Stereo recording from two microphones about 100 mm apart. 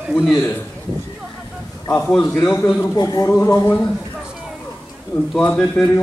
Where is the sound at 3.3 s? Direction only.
30° left (ahead or behind).